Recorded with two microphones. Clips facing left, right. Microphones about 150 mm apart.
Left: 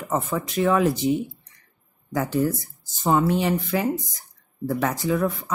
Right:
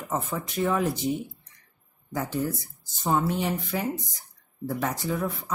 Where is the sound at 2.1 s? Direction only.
90° left.